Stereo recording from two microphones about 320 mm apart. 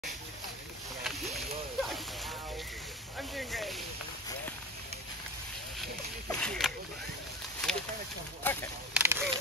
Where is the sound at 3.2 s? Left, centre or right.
Centre.